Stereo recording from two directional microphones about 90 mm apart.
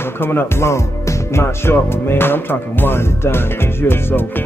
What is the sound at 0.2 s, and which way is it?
Speech, 25° left (ahead or behind).